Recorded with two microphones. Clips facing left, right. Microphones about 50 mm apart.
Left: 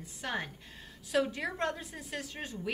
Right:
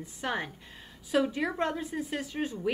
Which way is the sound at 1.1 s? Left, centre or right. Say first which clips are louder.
Right 3 dB; centre.